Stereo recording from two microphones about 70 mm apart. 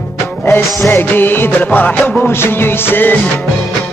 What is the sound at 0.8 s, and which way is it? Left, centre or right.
Music, left.